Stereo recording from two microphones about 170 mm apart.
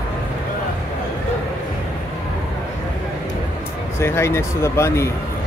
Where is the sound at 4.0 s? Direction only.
15° left (ahead or behind).